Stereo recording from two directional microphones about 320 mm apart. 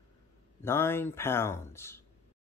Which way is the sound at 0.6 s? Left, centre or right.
Centre.